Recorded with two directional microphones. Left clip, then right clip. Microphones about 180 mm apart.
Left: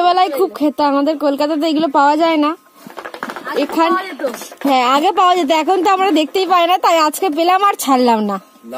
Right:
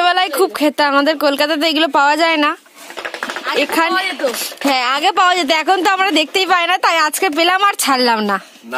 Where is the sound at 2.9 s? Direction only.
55° right (ahead or behind).